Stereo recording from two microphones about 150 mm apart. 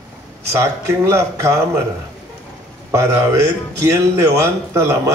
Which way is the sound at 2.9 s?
20° right (ahead or behind).